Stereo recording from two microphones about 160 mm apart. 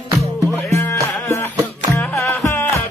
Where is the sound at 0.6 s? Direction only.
20° left (ahead or behind).